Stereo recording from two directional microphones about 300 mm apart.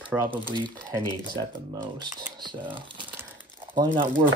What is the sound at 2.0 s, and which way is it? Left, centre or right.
Speech, centre.